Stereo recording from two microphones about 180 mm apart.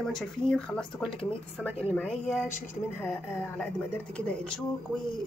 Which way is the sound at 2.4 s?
10° left (ahead or behind).